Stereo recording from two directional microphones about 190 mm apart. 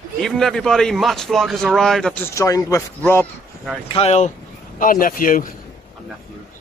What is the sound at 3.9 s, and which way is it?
Speech, 35° left (ahead or behind).